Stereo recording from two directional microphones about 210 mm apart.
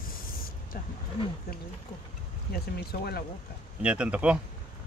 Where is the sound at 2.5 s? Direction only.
45° left (ahead or behind).